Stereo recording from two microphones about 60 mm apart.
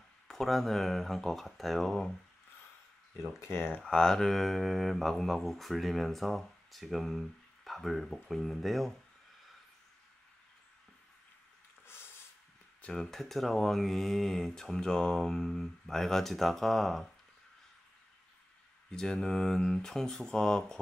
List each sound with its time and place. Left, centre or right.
0.3 s speech: centre
3.3 s speech: left
3.9 s speech: centre
11.8 s a sound: left
12.8 s speech: centre
18.9 s speech: centre